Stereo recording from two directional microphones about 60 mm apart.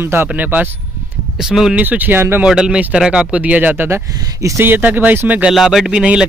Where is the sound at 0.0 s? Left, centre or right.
Right.